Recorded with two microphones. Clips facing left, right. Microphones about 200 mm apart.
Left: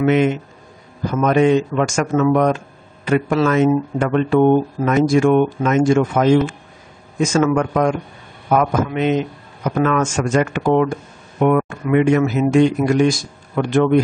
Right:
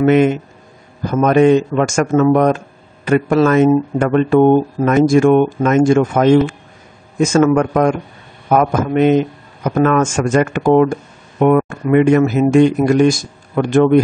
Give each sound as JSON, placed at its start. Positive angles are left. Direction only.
{"t": 0.0, "sound": "speech", "side_deg": -50}